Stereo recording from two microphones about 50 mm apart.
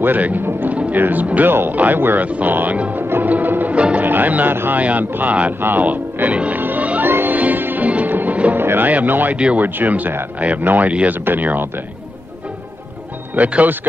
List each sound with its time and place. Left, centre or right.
0.0 s speech: right
1.5 s speech: right
3.1 s music: right
3.7 s speech: right
4.0 s speech: right
6.6 s music: right
7.3 s music: right
8.9 s speech: right
13.4 s speech: right